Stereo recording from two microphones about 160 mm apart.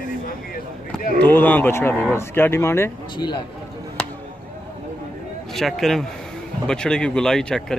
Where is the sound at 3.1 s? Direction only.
30° left (ahead or behind).